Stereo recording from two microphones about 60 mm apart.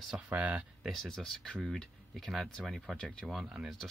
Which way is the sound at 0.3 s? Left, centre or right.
Right.